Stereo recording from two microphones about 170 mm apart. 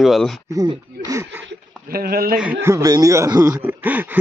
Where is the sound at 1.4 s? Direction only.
60° right (ahead or behind).